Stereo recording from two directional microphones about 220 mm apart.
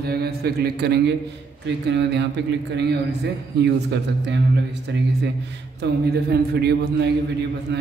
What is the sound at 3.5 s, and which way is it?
A man's voice, 50° right (ahead or behind).